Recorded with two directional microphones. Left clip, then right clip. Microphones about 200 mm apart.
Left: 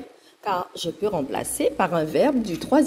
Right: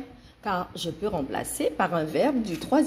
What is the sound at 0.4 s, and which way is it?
Speech, 20° left (ahead or behind).